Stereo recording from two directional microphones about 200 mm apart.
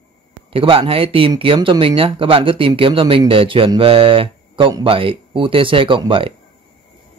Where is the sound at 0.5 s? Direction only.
25° right (ahead or behind).